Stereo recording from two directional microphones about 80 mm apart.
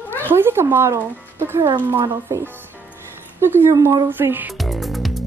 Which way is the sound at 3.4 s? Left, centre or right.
Right.